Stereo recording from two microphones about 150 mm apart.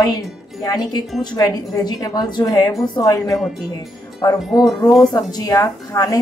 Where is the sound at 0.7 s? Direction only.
25° left (ahead or behind).